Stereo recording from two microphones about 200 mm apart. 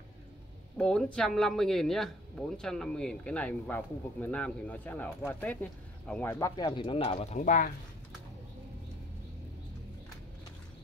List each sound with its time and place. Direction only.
0.7 s speech: 5° left (ahead or behind)
6.5 s speech: 25° left (ahead or behind); by 7.7 s 40° left (ahead or behind)